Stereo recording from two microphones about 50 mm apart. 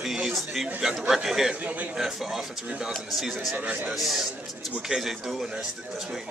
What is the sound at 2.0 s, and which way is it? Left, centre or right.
A man's voice, centre.